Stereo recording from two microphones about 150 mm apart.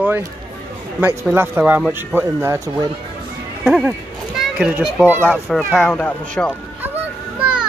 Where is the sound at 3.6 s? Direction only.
5° right (ahead or behind).